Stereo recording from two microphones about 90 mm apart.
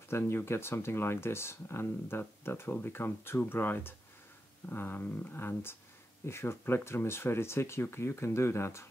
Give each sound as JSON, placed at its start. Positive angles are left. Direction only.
{"t": 0.1, "sound": "speech", "side_deg": 30}